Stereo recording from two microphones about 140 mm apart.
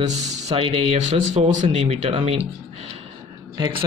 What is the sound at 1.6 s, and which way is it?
Speech, 45° right (ahead or behind).